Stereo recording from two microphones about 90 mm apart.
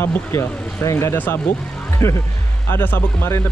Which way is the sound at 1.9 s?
30° left (ahead or behind).